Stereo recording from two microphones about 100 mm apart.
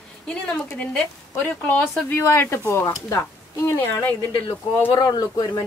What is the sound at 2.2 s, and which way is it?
Speech, 25° left (ahead or behind).